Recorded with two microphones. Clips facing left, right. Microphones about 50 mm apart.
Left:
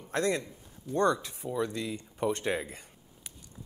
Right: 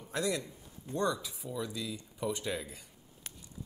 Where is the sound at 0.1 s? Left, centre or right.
Left.